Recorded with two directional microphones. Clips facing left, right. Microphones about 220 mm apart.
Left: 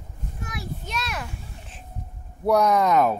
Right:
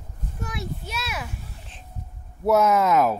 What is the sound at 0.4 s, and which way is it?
Child singing, 30° right (ahead or behind).